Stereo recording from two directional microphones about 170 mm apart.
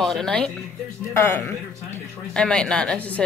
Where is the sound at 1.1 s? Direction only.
15° left (ahead or behind).